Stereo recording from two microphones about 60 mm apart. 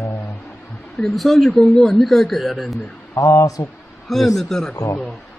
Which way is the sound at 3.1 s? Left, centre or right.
Left.